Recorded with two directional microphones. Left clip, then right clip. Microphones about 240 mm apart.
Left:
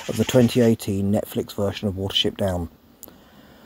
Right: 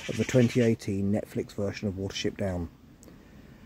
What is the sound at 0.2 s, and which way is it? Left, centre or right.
Speech, centre.